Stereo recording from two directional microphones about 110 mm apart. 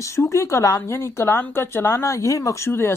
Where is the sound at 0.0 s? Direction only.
30° left (ahead or behind).